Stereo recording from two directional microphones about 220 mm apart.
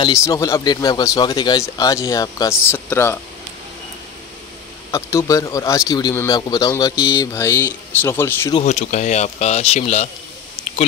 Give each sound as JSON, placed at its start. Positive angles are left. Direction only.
{"t": 0.0, "sound": "speech", "side_deg": 15}
{"t": 4.9, "sound": "speech", "side_deg": 15}
{"t": 8.5, "sound": "speech", "side_deg": 30}